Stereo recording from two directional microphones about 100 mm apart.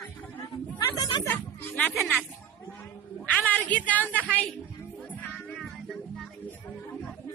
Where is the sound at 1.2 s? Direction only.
20° left (ahead or behind).